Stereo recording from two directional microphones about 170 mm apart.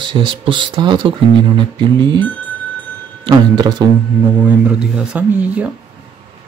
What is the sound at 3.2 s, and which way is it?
Speech, 25° right (ahead or behind).